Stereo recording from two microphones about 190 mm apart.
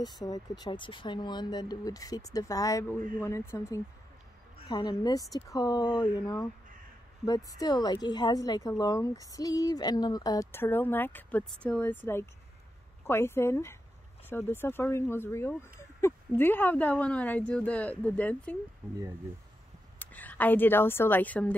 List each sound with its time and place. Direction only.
0.0 s a woman's voice: 20° left (ahead or behind)
4.6 s a woman's voice: 20° left (ahead or behind)
20.0 s speech: 10° left (ahead or behind)